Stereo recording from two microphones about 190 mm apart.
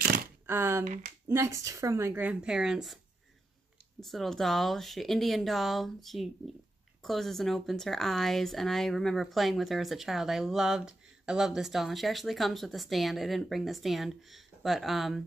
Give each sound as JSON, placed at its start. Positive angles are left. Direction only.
{"t": 0.0, "sound": "a sound", "side_deg": -50}
{"t": 0.5, "sound": "a woman's voice", "side_deg": -10}
{"t": 0.8, "sound": "speech", "side_deg": -45}
{"t": 1.2, "sound": "a woman's voice", "side_deg": -15}
{"t": 4.0, "sound": "speech", "side_deg": 0}